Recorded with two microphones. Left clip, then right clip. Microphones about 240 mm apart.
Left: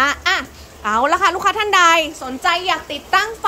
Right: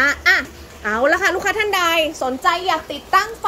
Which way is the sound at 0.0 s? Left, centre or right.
Centre.